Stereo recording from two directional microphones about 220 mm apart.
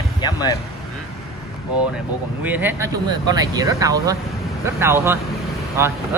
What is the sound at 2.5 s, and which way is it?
Speech, 10° right (ahead or behind).